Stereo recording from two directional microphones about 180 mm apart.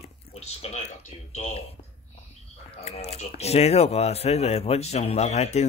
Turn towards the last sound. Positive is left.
turn(degrees=35)  # may be behind; listen again after turning